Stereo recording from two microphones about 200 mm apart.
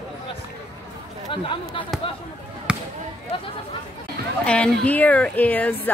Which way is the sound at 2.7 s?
5° right (ahead or behind).